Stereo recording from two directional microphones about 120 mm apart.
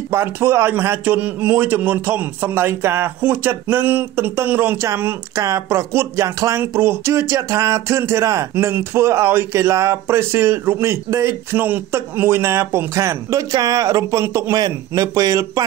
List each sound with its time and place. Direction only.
0.1 s a man's voice: 20° right (ahead or behind)